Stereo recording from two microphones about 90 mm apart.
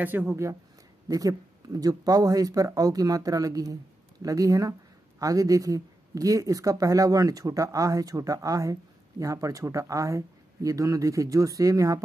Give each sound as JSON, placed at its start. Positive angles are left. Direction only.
{"t": 0.0, "sound": "speech", "side_deg": -20}
{"t": 1.0, "sound": "speech", "side_deg": -40}